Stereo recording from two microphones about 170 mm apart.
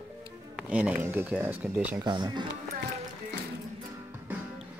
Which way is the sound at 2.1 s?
25° right (ahead or behind).